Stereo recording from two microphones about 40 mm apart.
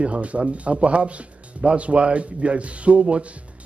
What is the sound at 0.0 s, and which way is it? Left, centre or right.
Speech, right.